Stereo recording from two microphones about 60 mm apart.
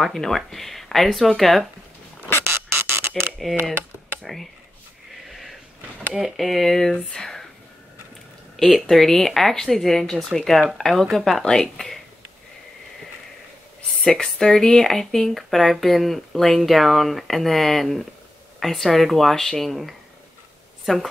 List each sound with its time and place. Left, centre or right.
0.0 s speech: centre
2.4 s a sound: right
4.2 s speech: centre
5.3 s a sound: centre
6.2 s speech: centre
7.1 s whispering: centre
8.5 s speech: centre
14.0 s speech: centre